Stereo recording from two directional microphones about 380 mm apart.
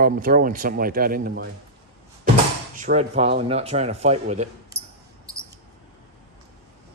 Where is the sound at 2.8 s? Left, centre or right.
Centre.